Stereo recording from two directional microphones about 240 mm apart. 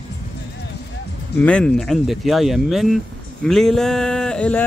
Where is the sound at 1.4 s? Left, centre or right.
Centre.